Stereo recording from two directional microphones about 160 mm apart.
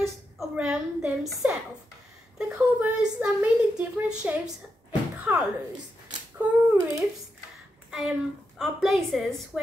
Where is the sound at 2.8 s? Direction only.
10° right (ahead or behind).